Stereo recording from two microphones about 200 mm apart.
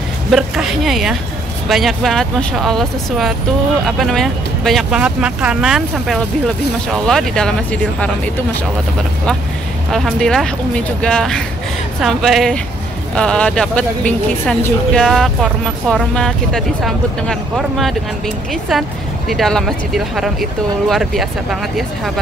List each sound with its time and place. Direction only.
0.3 s speech: centre (ahead or behind)
9.8 s speech: centre (ahead or behind)